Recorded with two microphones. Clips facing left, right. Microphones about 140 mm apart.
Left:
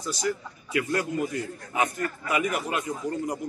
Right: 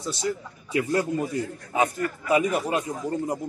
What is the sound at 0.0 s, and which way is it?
A man's voice, 25° right (ahead or behind).